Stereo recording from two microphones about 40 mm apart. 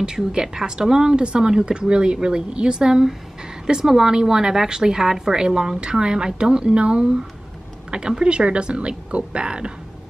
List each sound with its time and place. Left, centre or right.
0.0 s a woman's voice: centre
8.2 s a woman's voice: right